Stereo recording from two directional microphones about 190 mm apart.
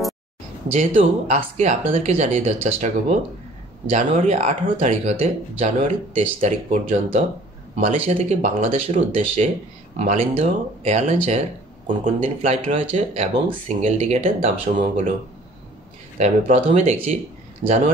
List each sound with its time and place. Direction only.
0.7 s speech: 35° right (ahead or behind)
12.2 s speech: 35° right (ahead or behind)
16.2 s speech: 35° right (ahead or behind)